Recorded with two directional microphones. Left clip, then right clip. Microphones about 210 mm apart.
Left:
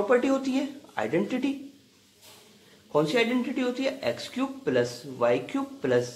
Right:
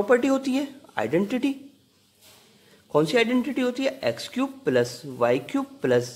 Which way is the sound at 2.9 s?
50° right (ahead or behind).